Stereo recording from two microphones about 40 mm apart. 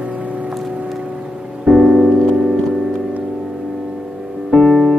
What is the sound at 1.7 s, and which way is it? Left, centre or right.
Music, centre.